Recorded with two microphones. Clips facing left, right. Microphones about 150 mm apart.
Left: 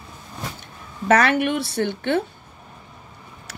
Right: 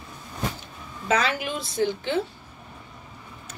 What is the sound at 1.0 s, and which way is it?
Speech, 65° left (ahead or behind).